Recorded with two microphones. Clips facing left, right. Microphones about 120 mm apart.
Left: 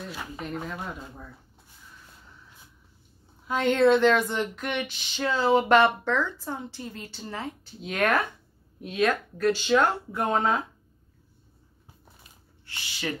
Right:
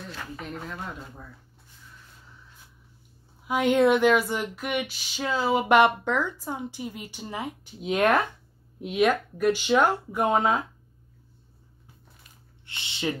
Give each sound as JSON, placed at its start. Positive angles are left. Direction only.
{"t": 0.4, "sound": "speech", "side_deg": 0}
{"t": 3.4, "sound": "speech", "side_deg": -15}
{"t": 12.6, "sound": "speech", "side_deg": -25}